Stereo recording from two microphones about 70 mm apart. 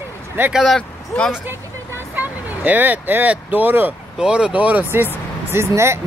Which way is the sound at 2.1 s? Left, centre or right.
Right.